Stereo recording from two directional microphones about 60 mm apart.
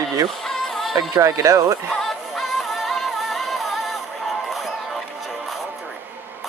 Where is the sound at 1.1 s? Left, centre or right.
Right.